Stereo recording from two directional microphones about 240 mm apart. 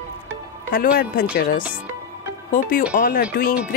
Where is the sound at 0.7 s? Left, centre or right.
Left.